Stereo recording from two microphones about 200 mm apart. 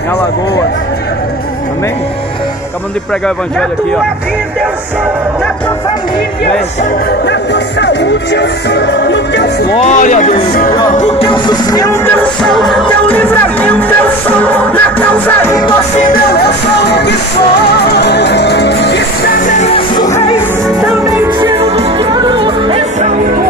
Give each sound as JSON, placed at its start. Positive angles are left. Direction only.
{"t": 6.8, "sound": "music", "side_deg": 55}
{"t": 9.8, "sound": "speech", "side_deg": 35}
{"t": 11.0, "sound": "music", "side_deg": 30}
{"t": 16.0, "sound": "music", "side_deg": 50}
{"t": 19.4, "sound": "music", "side_deg": 35}
{"t": 21.0, "sound": "music", "side_deg": -20}